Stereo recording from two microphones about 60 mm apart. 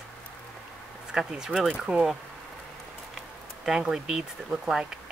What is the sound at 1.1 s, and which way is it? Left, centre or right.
Speech, centre.